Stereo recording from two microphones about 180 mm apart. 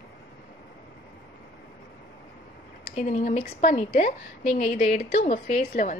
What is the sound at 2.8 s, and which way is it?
A woman's voice, 40° left (ahead or behind).